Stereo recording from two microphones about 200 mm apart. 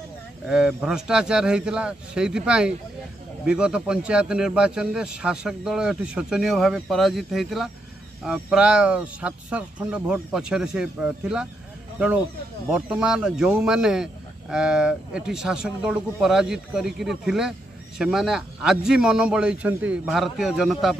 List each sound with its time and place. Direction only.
0.5 s speech: 5° right (ahead or behind)
12.7 s speech: 5° right (ahead or behind)